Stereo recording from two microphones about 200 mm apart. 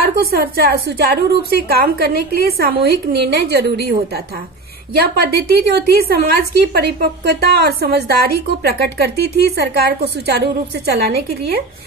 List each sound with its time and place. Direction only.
0.0 s a woman's voice: 50° right (ahead or behind)
4.9 s a woman's voice: 50° right (ahead or behind)